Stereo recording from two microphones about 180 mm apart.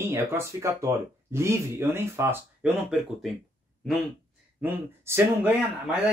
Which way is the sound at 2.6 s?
Centre (ahead or behind).